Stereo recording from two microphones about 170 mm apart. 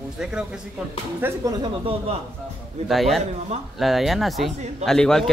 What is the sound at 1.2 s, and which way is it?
Speech, 20° right (ahead or behind).